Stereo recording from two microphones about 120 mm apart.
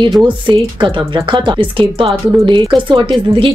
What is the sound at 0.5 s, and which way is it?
A woman's voice, 40° right (ahead or behind).